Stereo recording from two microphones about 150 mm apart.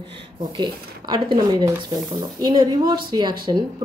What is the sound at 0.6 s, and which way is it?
Speech, 30° right (ahead or behind).